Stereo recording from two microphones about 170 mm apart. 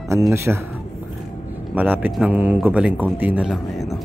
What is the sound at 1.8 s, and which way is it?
A man's voice, 10° right (ahead or behind).